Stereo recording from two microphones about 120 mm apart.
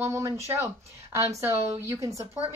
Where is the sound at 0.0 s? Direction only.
25° right (ahead or behind).